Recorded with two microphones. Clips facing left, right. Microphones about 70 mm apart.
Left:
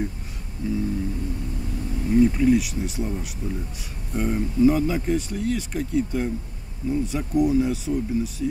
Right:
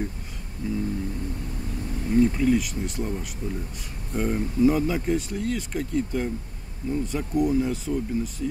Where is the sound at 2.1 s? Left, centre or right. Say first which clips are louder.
Left 3 dB; centre.